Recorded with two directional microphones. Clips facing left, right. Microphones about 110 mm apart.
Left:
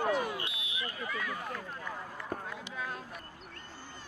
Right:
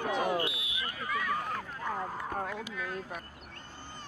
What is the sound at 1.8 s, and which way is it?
Speech, 50° right (ahead or behind).